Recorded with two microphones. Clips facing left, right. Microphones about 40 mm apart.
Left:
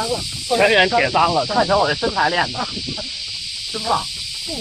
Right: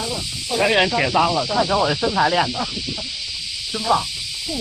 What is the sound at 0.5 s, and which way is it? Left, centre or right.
Speech, centre.